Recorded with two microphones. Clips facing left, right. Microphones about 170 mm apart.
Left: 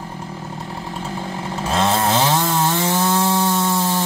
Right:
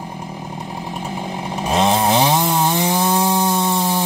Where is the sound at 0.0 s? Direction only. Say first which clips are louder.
Right 1 dB; 15° right (ahead or behind).